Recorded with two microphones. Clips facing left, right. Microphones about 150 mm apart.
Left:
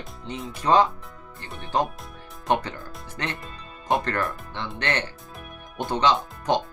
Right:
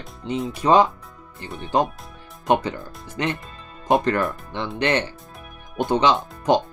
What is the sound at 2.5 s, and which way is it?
Speech, 15° right (ahead or behind).